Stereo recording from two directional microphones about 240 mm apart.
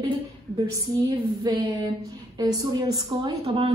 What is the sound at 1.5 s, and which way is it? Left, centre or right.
A woman's voice, centre.